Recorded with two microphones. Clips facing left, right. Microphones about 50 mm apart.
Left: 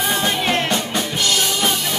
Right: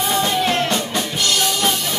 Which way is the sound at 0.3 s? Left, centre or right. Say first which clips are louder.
Right 1 dB; centre.